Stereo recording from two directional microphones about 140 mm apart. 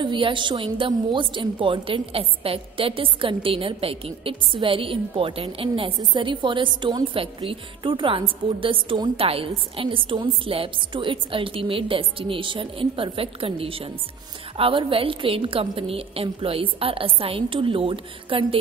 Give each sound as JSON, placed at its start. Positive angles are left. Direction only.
{"t": 0.0, "sound": "a woman's voice", "side_deg": -35}